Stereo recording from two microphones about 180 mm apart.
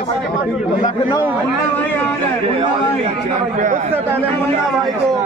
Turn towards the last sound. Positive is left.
turn(degrees=-45)  # may be behind; listen again after turning